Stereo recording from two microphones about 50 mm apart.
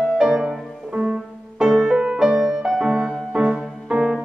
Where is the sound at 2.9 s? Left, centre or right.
Right.